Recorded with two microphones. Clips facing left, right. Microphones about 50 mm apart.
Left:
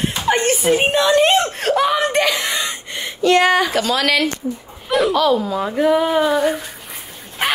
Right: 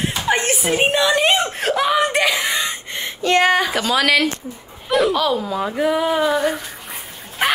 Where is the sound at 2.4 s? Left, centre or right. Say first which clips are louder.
Right 1 dB; right.